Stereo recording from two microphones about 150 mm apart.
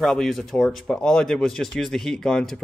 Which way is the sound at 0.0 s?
5° left (ahead or behind).